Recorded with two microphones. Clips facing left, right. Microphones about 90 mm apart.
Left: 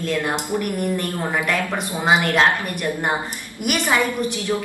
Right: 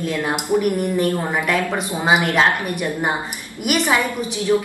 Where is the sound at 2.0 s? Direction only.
10° right (ahead or behind).